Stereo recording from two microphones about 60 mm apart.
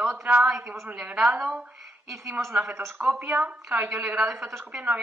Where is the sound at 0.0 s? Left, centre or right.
Right.